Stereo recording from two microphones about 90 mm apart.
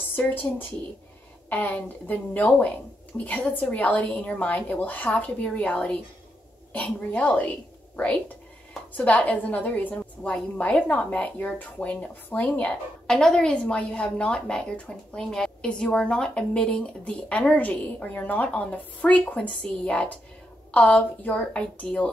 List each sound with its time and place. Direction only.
0.1 s a woman's voice: 20° left (ahead or behind)
13.0 s a woman's voice: 5° left (ahead or behind)